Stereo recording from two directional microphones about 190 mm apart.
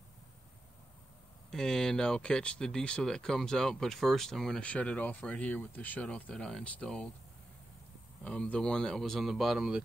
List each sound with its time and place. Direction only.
1.5 s speech: 5° left (ahead or behind)
8.2 s speech: 5° left (ahead or behind)